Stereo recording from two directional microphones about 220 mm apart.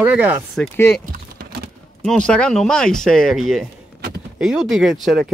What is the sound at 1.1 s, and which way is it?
Typing, 40° right (ahead or behind).